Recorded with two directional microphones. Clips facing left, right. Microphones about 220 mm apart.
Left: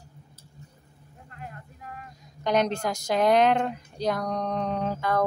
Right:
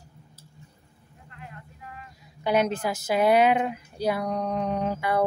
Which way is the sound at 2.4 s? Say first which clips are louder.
Right 1 dB; 5° right (ahead or behind).